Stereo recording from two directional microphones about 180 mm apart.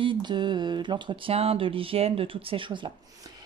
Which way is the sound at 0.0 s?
25° right (ahead or behind).